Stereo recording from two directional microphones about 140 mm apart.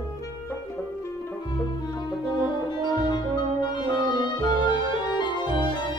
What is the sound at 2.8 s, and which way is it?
Music, 30° left (ahead or behind).